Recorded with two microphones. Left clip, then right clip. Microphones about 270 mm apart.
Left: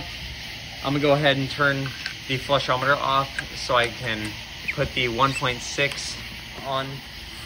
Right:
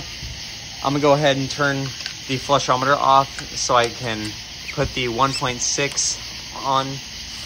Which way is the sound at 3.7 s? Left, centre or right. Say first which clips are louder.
Right 4 dB; centre.